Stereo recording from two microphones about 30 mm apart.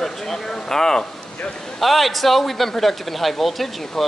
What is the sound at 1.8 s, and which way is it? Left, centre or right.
Speech, centre.